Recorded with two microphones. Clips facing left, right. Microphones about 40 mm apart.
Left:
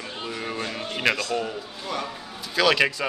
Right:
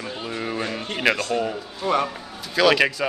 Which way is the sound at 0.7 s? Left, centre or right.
Centre.